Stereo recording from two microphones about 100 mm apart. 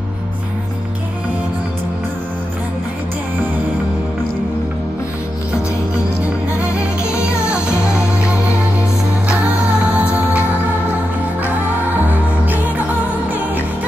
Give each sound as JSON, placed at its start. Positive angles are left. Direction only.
{"t": 6.6, "sound": "music", "side_deg": -10}
{"t": 9.4, "sound": "music", "side_deg": -10}
{"t": 12.1, "sound": "music", "side_deg": -15}